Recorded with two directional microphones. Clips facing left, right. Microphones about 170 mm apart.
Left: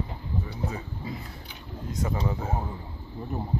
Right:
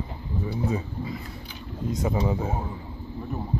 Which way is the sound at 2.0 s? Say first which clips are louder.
Right 4 dB; 15° right (ahead or behind).